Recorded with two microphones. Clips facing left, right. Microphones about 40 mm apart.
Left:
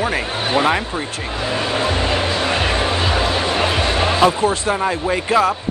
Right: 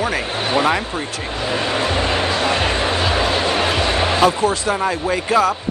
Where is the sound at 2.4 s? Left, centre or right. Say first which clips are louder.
Even; centre.